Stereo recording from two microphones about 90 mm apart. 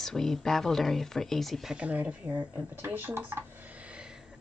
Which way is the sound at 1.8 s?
15° right (ahead or behind).